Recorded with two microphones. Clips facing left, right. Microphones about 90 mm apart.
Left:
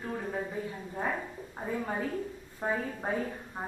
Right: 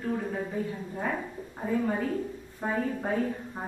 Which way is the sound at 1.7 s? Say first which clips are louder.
Right 5 dB; 5° left (ahead or behind).